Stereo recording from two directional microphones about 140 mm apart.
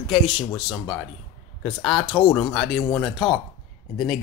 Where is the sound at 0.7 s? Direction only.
25° left (ahead or behind).